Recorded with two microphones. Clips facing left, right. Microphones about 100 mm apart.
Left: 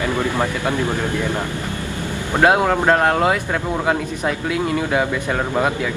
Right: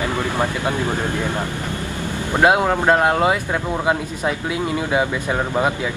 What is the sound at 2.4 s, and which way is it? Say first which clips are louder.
Speech: left 1 dB; 10° right (ahead or behind).